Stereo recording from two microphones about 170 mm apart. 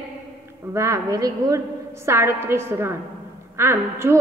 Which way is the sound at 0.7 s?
15° right (ahead or behind).